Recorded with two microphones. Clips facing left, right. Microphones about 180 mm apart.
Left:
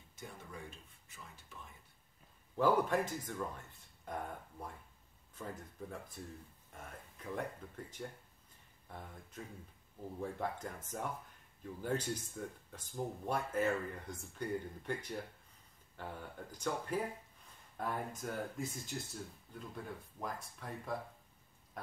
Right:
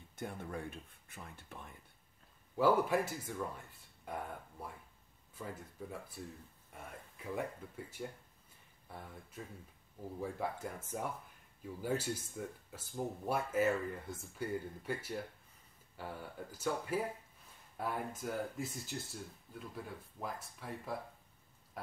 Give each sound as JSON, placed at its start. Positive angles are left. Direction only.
{"t": 0.1, "sound": "speech", "side_deg": -60}
{"t": 2.5, "sound": "speech", "side_deg": -10}
{"t": 10.2, "sound": "speech", "side_deg": -10}
{"t": 21.8, "sound": "a sound", "side_deg": -5}